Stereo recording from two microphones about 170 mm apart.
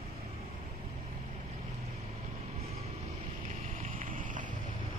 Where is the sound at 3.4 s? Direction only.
45° right (ahead or behind).